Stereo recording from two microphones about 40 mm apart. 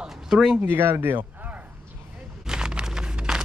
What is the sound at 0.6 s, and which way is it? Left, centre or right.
Speech, right.